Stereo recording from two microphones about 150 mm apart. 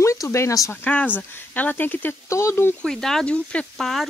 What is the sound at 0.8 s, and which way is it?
Speech, 10° left (ahead or behind).